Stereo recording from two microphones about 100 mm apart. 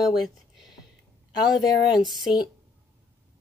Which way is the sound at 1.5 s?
40° left (ahead or behind).